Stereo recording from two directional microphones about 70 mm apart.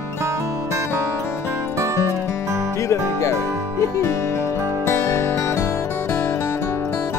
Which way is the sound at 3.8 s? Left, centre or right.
Left.